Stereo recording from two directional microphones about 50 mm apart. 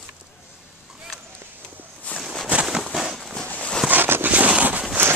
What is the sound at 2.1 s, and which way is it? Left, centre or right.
Walk, left.